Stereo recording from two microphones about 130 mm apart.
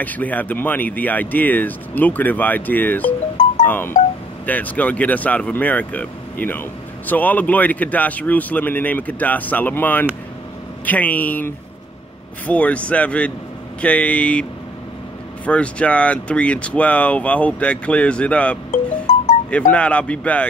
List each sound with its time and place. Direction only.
0.0 s speech: 10° left (ahead or behind)
3.6 s wind chime: 15° left (ahead or behind)
4.5 s speech: 10° left (ahead or behind)
15.4 s speech: 10° left (ahead or behind)
18.7 s music: 70° left (ahead or behind)
19.7 s speech: 10° left (ahead or behind)